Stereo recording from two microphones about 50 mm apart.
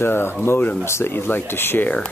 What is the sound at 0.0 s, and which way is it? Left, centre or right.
Speech, left.